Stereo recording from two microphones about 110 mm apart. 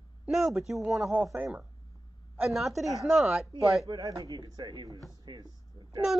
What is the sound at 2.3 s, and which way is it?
A man's voice, 5° right (ahead or behind).